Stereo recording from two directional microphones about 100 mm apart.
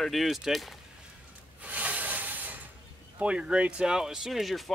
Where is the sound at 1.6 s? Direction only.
15° right (ahead or behind).